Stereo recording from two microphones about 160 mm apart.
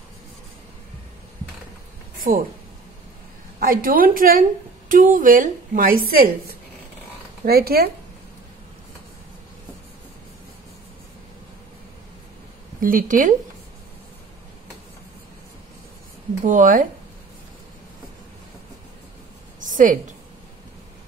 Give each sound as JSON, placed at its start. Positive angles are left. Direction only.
{"t": 2.3, "sound": "a woman's voice", "side_deg": -60}
{"t": 3.5, "sound": "a woman's voice", "side_deg": -65}
{"t": 7.4, "sound": "speech", "side_deg": -75}
{"t": 12.8, "sound": "a woman's voice", "side_deg": -60}
{"t": 16.4, "sound": "a woman's voice", "side_deg": -55}
{"t": 19.6, "sound": "a sound", "side_deg": -55}